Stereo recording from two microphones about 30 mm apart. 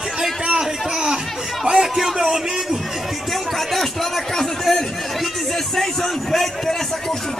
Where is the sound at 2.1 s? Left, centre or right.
Centre.